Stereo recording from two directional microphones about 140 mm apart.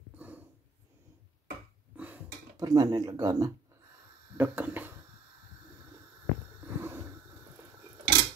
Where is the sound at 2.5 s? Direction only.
25° right (ahead or behind).